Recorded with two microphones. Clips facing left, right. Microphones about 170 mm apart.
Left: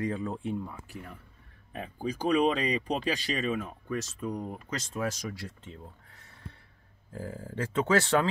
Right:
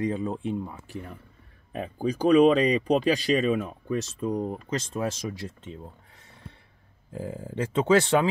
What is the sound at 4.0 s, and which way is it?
Speech, 25° right (ahead or behind).